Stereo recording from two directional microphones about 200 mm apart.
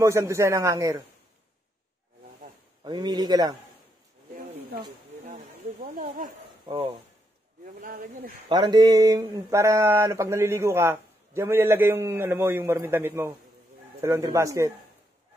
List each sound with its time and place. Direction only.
0.0 s a man's voice: 15° right (ahead or behind)
2.8 s a man's voice: 20° right (ahead or behind)
5.2 s a sound: 40° right (ahead or behind)
6.6 s speech: 25° right (ahead or behind)
7.8 s speech: 45° right (ahead or behind)
8.5 s a man's voice: 20° right (ahead or behind)